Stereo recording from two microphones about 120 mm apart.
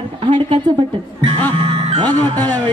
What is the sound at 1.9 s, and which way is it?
Speech, 35° right (ahead or behind).